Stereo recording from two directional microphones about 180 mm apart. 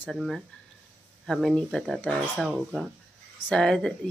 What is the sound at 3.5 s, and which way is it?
Speech, 5° left (ahead or behind).